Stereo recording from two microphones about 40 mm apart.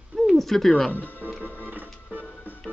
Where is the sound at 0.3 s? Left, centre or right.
Centre.